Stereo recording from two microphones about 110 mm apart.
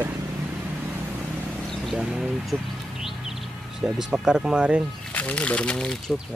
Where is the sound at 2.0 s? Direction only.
5° right (ahead or behind).